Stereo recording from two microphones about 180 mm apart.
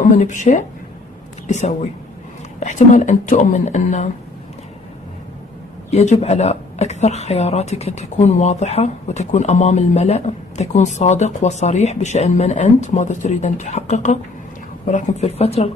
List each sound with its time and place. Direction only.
0.0 s a woman's voice: 45° left (ahead or behind)
5.9 s a woman's voice: 40° left (ahead or behind)